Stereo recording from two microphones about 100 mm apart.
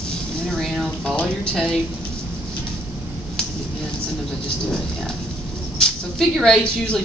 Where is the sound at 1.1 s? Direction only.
10° left (ahead or behind).